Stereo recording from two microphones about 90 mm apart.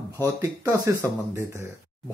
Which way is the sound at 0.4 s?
35° right (ahead or behind).